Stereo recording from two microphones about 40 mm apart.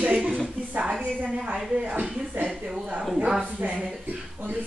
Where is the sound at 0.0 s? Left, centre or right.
Right.